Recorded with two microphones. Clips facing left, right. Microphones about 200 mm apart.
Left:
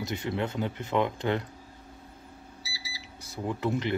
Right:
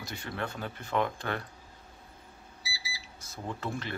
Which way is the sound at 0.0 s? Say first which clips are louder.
Left 6 dB; 20° left (ahead or behind).